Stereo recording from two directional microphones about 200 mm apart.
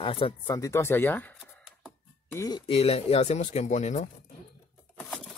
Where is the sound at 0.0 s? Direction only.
25° left (ahead or behind); by 1.4 s 10° left (ahead or behind).